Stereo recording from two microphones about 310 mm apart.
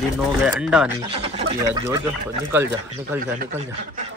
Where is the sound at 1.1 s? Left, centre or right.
Centre.